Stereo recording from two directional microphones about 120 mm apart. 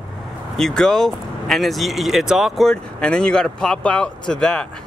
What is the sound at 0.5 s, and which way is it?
Speech, 5° left (ahead or behind).